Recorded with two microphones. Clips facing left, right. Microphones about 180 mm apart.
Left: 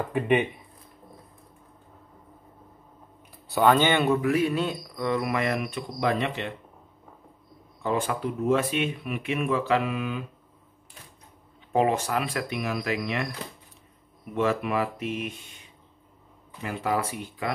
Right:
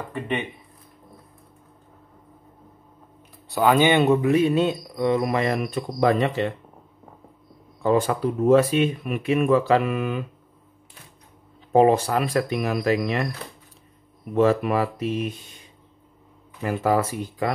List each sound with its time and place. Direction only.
3.4 s speech: centre (ahead or behind)
3.7 s speech: 15° right (ahead or behind); by 6.5 s 40° right (ahead or behind)
7.8 s speech: 40° right (ahead or behind)
11.7 s speech: 35° right (ahead or behind)
14.3 s speech: 35° right (ahead or behind)
16.6 s speech: 40° right (ahead or behind)